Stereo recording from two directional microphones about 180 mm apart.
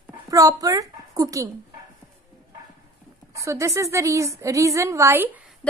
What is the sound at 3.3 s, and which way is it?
A woman's voice, 15° right (ahead or behind).